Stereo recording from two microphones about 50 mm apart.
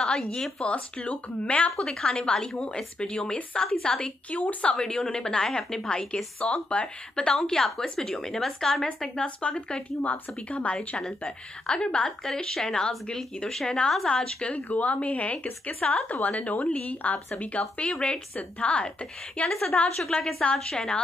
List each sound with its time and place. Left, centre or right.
0.0 s a woman's voice: centre
2.0 s a woman's voice: centre
4.3 s a woman's voice: left
4.7 s a woman's voice: centre
7.3 s a woman's voice: centre
10.0 s a woman's voice: left
11.1 s a woman's voice: centre
12.3 s a woman's voice: centre; by 17.9 s left
18.0 s a woman's voice: centre
20.1 s a woman's voice: centre